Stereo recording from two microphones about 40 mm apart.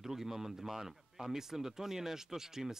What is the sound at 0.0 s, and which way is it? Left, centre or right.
Speech, centre.